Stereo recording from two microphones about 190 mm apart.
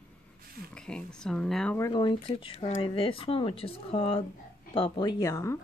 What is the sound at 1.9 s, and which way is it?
Speech, 25° left (ahead or behind).